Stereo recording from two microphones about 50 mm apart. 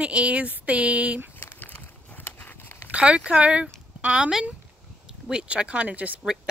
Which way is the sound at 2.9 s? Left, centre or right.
Right.